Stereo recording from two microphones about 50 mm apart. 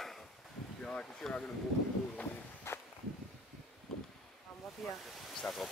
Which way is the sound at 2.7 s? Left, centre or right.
Left.